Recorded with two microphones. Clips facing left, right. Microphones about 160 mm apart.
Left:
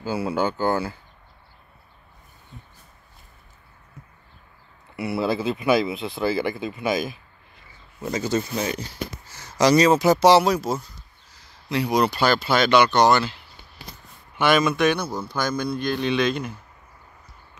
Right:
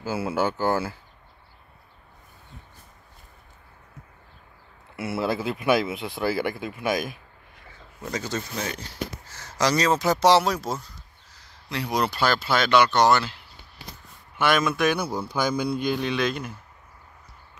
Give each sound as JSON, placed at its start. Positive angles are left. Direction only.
{"t": 0.0, "sound": "a man's voice", "side_deg": -5}
{"t": 4.9, "sound": "a man's voice", "side_deg": 0}
{"t": 14.3, "sound": "a man's voice", "side_deg": 0}